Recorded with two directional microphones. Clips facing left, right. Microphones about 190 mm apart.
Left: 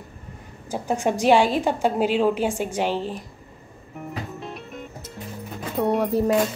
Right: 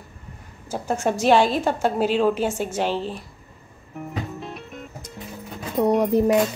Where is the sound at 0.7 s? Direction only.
15° left (ahead or behind).